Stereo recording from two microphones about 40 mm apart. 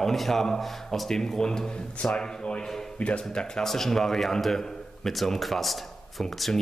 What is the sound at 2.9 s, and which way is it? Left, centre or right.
Speech, left.